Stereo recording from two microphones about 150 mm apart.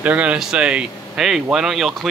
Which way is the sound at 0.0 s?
10° right (ahead or behind).